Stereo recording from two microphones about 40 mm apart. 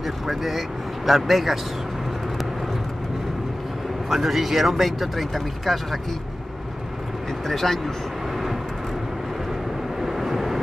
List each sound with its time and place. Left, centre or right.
0.0 s speech: centre
4.1 s speech: centre
7.4 s speech: centre
10.0 s vehicle: centre